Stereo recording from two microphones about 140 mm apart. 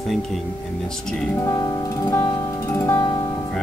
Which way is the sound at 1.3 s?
20° left (ahead or behind).